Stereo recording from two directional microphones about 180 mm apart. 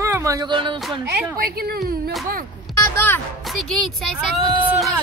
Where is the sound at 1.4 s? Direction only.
55° right (ahead or behind).